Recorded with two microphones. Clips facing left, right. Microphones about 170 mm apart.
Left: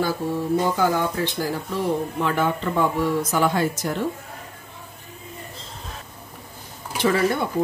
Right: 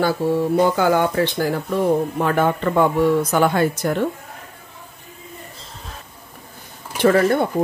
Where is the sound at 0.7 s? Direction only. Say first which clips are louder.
Right 5 dB; 70° right (ahead or behind).